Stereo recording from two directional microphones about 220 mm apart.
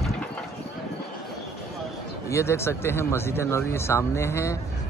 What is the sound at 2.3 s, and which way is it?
Speech, 10° left (ahead or behind).